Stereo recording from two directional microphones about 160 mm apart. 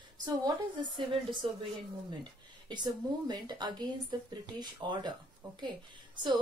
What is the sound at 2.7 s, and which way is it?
Speech, 25° right (ahead or behind).